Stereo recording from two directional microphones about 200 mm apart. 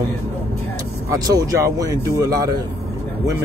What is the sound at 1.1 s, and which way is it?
Speech, 15° right (ahead or behind).